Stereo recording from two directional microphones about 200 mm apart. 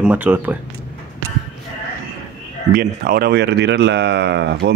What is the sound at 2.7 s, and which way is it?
A man's voice, 45° right (ahead or behind).